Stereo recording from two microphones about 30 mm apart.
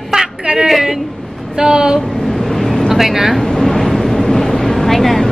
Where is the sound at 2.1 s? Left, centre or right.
Centre.